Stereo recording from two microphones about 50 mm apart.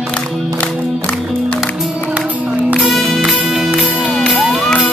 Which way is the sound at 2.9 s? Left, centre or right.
Centre.